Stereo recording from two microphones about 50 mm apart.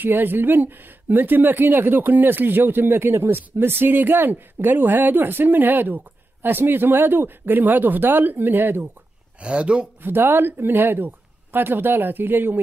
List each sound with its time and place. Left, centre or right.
0.0 s speech: right
2.9 s speech: right
9.4 s speech: right
10.0 s speech: right